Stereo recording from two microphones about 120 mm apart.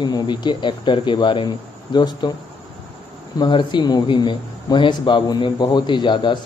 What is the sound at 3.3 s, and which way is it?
Speech, 40° left (ahead or behind).